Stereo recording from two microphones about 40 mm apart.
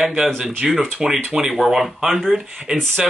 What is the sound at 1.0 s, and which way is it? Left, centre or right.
Speech, right.